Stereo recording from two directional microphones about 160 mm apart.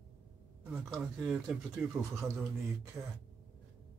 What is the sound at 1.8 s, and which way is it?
Speech, 15° right (ahead or behind).